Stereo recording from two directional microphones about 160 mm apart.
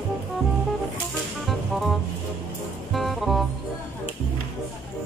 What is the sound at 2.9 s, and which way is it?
Music, centre (ahead or behind).